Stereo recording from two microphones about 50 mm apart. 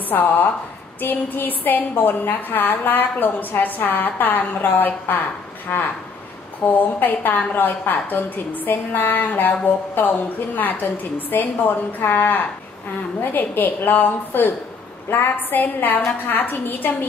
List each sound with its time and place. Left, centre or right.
0.1 s a woman's voice: left
6.6 s a woman's voice: left